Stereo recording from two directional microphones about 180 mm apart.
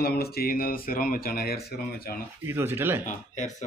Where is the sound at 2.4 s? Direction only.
15° right (ahead or behind).